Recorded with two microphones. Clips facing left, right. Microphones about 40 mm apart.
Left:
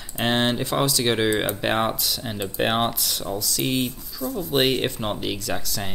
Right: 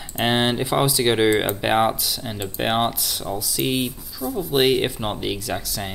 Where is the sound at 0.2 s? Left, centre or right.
Centre.